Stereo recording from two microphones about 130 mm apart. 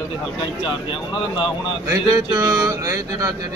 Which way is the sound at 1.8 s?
25° right (ahead or behind).